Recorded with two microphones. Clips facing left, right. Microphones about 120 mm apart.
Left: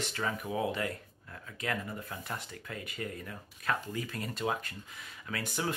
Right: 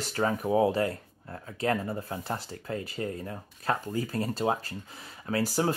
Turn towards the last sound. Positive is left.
turn(degrees=-35)  # may be behind; listen again after turning